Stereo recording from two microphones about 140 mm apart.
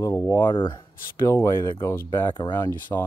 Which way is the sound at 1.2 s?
20° left (ahead or behind).